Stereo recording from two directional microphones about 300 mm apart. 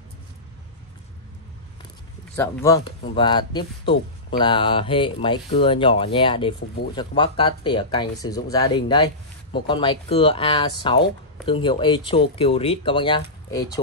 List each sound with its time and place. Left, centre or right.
2.3 s speech: centre